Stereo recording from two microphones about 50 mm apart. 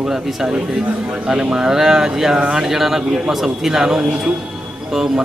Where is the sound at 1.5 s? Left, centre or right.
Centre.